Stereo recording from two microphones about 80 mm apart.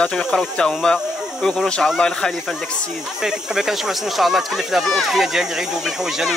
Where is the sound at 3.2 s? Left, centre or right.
Centre.